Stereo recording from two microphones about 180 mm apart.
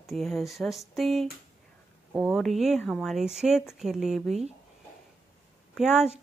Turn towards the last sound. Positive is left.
turn(degrees=-5)  # may be behind; listen again after turning